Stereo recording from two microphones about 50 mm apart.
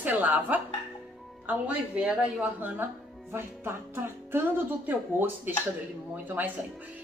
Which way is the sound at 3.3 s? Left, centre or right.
Right.